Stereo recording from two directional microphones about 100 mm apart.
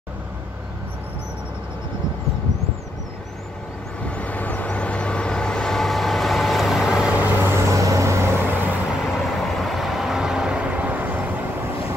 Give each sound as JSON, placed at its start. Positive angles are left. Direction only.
{"t": 4.0, "sound": "vehicle", "side_deg": 15}
{"t": 7.3, "sound": "vehicle", "side_deg": -25}
{"t": 9.1, "sound": "vehicle", "side_deg": 0}